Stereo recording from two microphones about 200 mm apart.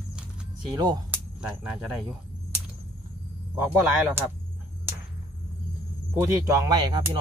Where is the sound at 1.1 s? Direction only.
5° right (ahead or behind).